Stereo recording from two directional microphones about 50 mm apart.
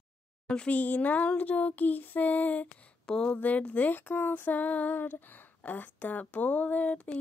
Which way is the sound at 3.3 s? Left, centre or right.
Left.